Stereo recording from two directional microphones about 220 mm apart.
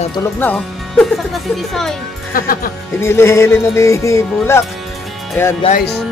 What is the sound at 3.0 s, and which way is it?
Music, 10° left (ahead or behind).